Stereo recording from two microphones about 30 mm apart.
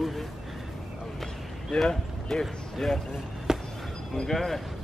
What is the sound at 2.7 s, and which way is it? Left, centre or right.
Speech, centre.